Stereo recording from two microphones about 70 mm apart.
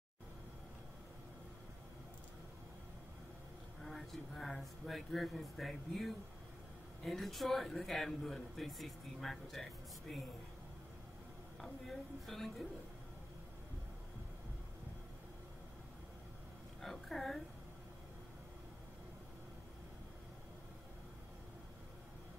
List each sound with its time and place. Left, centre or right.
3.8 s speech: centre
11.6 s speech: centre
16.8 s a sound: centre